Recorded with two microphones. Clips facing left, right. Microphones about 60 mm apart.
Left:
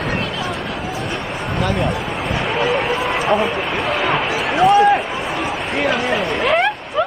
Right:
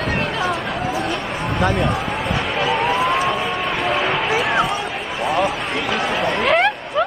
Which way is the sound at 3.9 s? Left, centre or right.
Centre.